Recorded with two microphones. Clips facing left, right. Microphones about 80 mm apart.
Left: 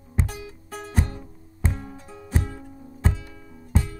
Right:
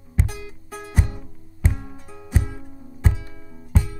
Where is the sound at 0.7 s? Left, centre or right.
Centre.